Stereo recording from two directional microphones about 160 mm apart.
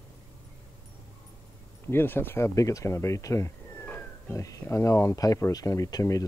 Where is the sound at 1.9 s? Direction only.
15° left (ahead or behind).